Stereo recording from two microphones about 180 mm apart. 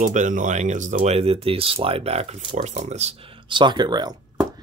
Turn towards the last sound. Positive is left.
turn(degrees=-25)  # may be behind; listen again after turning